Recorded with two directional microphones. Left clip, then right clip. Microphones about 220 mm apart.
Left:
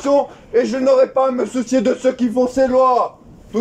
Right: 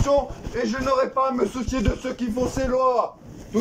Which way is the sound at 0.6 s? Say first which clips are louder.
Left 9 dB; 30° left (ahead or behind).